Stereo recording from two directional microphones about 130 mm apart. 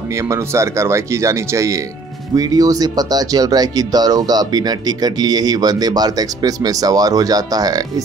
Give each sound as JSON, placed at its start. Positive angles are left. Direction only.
{"t": 0.1, "sound": "speech", "side_deg": -25}